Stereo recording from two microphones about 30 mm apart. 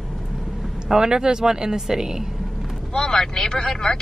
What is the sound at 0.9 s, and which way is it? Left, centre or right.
Speech, right.